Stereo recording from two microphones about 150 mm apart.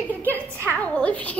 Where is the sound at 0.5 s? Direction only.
15° right (ahead or behind).